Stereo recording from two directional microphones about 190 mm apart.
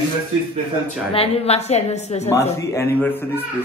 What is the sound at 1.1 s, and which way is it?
A woman's voice, 30° left (ahead or behind).